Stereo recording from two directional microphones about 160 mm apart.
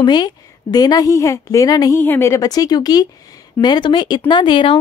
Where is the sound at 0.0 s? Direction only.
25° left (ahead or behind).